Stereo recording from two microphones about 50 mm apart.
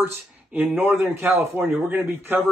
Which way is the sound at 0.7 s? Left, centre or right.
Right.